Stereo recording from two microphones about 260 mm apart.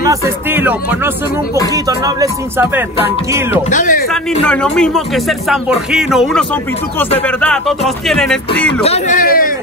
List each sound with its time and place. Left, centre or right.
0.1 s speech: centre
3.7 s speech: left
4.1 s speech: centre
8.8 s a man's voice: left